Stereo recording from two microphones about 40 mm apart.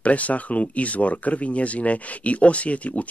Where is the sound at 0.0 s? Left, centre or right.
Left.